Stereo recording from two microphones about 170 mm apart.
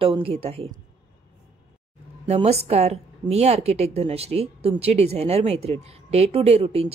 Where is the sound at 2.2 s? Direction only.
35° right (ahead or behind).